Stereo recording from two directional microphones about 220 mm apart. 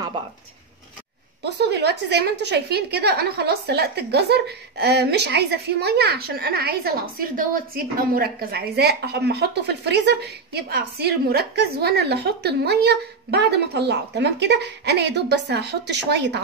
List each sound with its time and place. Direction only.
1.4 s a woman's voice: 50° right (ahead or behind)